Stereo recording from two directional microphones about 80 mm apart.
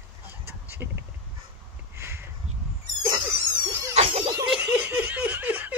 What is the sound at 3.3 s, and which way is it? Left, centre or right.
Cat, right.